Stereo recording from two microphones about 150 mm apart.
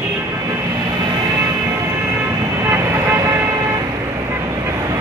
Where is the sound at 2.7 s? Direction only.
15° right (ahead or behind).